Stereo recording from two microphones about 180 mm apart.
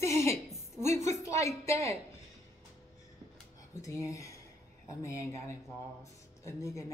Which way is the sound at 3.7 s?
20° left (ahead or behind).